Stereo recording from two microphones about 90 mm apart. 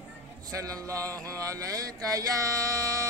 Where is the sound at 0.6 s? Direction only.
40° right (ahead or behind).